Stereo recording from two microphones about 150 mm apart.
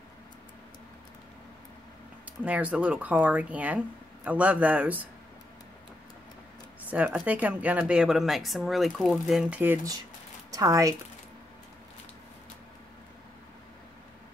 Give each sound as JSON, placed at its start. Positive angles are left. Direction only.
{"t": 2.4, "sound": "speech", "side_deg": -10}
{"t": 6.9, "sound": "speech", "side_deg": -10}
{"t": 10.5, "sound": "speech", "side_deg": -20}